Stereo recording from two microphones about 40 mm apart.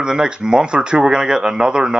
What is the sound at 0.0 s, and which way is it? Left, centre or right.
Speech, centre.